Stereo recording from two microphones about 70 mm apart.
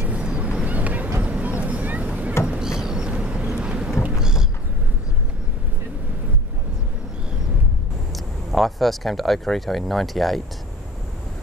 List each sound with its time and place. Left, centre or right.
0.0 s vehicle: centre
2.4 s a sound: centre
3.5 s vehicle: centre
4.0 s thunder: centre
8.1 s speech: centre